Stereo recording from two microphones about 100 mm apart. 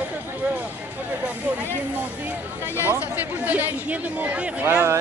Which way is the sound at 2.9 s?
15° right (ahead or behind).